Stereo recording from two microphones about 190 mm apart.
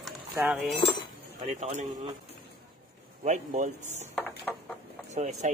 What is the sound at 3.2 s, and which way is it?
Speech, 40° right (ahead or behind).